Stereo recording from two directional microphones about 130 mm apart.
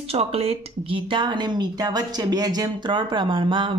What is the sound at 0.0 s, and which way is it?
Speech, 50° right (ahead or behind).